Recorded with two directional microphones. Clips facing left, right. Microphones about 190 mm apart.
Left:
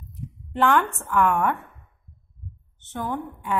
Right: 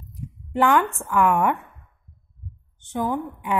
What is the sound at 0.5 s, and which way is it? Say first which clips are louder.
A woman's voice: right 2 dB; 10° right (ahead or behind).